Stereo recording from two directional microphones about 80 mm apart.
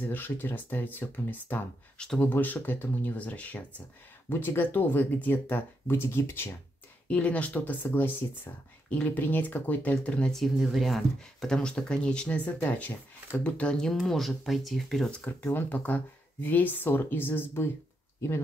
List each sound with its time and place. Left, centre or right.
0.0 s speech: left
2.0 s speech: centre
2.2 s speech: left
7.1 s speech: centre
10.3 s speech: centre
15.2 s speech: left